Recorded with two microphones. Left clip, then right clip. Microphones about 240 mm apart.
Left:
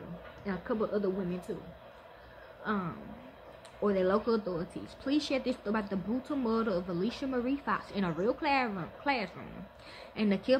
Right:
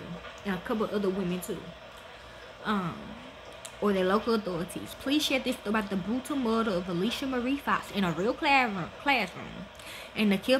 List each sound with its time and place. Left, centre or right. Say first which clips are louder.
0.5 s speech: right 2 dB; right
2.7 s speech: right 4 dB; centre